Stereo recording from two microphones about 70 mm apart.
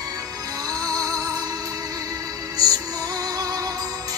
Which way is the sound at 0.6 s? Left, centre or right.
Right.